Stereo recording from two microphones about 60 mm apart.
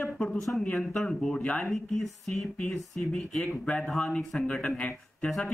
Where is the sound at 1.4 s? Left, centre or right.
Left.